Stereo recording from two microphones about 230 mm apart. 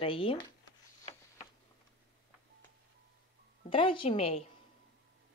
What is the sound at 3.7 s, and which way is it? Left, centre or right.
Speech, left.